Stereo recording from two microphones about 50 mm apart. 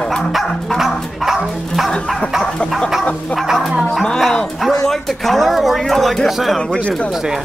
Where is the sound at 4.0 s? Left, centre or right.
Centre.